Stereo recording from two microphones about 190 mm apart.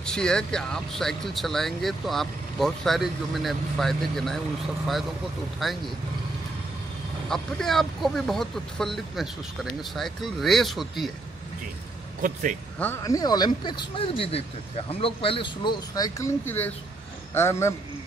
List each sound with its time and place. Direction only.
0.0 s speech: 5° left (ahead or behind)
5.6 s speech: centre (ahead or behind)
7.2 s speech: centre (ahead or behind)
12.2 s speech: 45° right (ahead or behind)
12.7 s a man's voice: 10° left (ahead or behind)